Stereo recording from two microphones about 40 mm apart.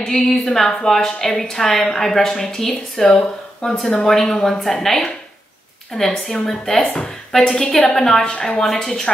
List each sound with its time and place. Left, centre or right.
0.0 s a woman's voice: centre
7.0 s a sound: centre
7.9 s a woman's voice: centre